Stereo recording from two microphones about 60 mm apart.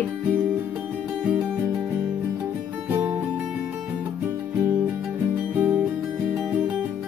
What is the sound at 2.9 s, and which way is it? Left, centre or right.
Music, right.